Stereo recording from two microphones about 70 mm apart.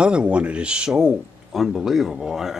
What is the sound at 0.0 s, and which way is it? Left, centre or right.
Speech, centre.